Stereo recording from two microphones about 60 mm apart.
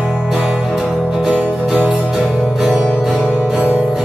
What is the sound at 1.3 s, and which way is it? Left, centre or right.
Music, right.